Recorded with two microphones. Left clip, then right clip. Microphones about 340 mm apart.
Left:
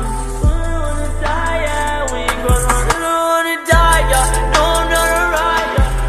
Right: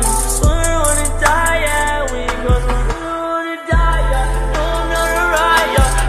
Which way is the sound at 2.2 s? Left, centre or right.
Centre.